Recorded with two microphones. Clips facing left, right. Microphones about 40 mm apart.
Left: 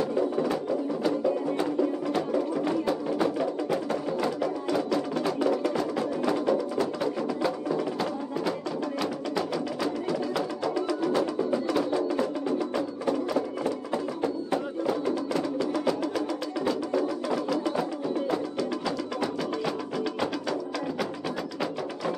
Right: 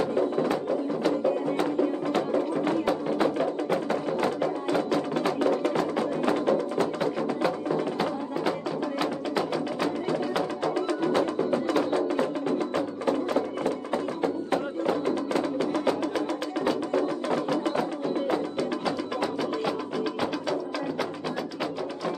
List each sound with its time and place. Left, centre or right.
0.0 s music: right
2.1 s music: right
7.7 s music: right
15.0 s music: right
18.6 s music: centre
19.4 s music: centre